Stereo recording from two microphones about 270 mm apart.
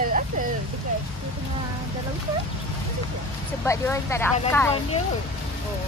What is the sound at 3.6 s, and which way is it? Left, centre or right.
Speech, centre.